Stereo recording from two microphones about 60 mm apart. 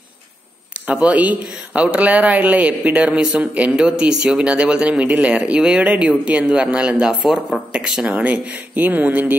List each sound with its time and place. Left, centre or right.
0.9 s speech: right
8.0 s speech: right